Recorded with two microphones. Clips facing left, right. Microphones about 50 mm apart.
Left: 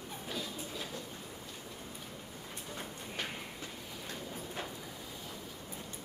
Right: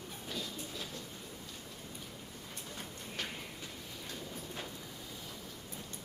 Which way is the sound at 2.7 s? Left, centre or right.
Centre.